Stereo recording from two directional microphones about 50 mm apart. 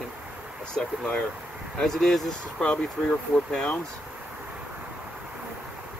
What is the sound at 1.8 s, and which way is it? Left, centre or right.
Speech, centre.